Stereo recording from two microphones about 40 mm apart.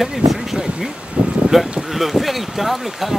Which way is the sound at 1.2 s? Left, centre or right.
Right.